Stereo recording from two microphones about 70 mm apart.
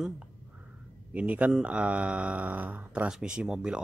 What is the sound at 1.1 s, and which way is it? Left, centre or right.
Speech, centre.